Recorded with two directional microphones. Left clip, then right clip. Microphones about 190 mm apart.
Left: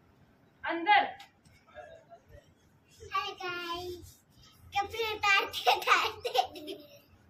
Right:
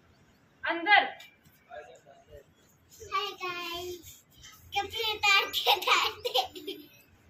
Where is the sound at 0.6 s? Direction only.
45° right (ahead or behind).